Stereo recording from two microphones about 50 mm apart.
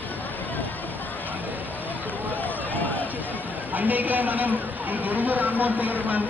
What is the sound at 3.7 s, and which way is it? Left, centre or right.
Speech, right.